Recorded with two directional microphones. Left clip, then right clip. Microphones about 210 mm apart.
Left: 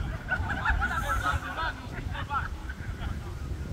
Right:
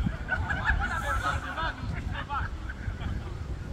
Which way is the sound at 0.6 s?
10° right (ahead or behind).